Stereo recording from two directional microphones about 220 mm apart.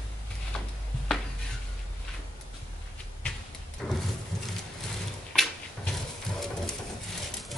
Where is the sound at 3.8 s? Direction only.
5° left (ahead or behind).